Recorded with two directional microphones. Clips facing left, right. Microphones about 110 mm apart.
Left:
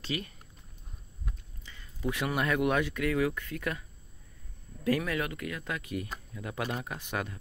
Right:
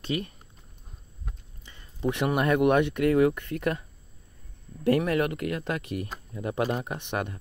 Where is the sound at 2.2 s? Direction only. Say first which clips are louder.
Right 6 dB; 40° right (ahead or behind).